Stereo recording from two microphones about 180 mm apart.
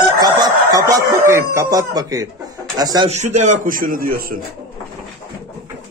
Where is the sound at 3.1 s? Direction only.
40° right (ahead or behind).